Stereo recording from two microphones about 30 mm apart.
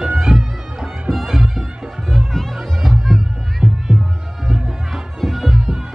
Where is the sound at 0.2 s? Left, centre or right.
Centre.